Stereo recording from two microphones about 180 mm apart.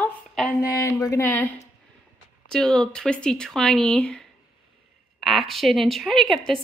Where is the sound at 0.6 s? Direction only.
15° left (ahead or behind).